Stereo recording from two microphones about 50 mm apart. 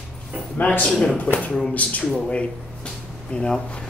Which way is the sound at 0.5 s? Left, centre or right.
Left.